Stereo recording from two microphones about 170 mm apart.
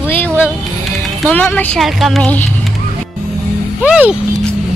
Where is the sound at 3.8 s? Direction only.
5° right (ahead or behind).